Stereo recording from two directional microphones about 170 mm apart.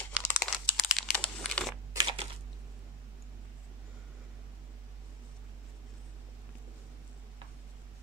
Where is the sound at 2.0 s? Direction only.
35° right (ahead or behind).